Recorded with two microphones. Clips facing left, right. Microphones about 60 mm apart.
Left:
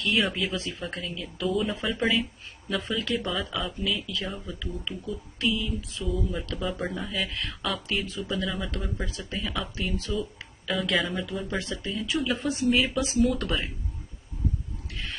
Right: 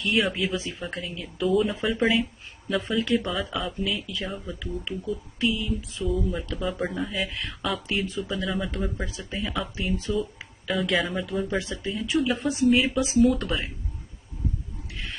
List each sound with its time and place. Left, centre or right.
0.2 s speech: centre
6.0 s speech: centre
8.0 s speech: centre
8.3 s speech: centre
9.9 s speech: right
10.7 s speech: centre